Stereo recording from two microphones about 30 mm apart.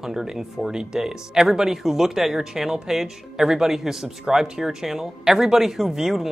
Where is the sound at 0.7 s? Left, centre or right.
Right.